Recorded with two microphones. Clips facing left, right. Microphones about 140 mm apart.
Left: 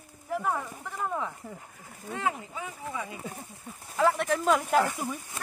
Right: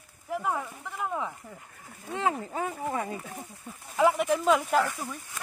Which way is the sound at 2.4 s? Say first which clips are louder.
Right 7 dB; 45° right (ahead or behind).